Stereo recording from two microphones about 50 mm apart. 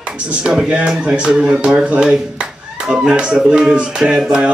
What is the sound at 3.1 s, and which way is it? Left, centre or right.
Speech, centre.